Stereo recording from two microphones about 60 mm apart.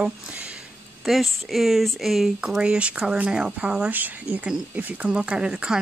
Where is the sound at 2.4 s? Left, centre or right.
Centre.